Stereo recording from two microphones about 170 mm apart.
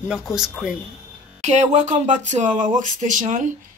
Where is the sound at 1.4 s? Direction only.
40° right (ahead or behind).